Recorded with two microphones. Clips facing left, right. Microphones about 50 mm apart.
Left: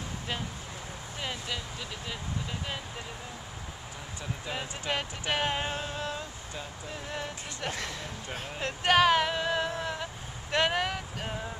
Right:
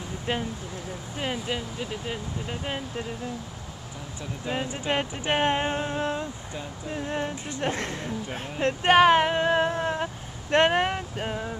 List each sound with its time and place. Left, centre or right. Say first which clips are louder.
0.3 s speech: right 9 dB; right
4.5 s speech: right 6 dB; centre